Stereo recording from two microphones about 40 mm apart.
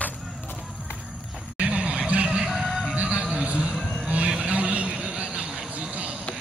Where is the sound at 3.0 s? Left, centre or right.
Right.